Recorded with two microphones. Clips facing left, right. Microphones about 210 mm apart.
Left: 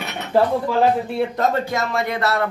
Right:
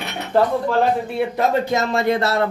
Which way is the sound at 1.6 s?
25° right (ahead or behind).